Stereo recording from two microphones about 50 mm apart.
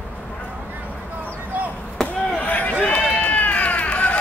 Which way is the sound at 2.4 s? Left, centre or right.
Left.